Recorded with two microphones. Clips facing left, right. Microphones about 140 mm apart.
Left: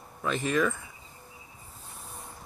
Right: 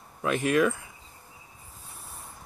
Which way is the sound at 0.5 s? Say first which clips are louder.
Right 4 dB; 10° right (ahead or behind).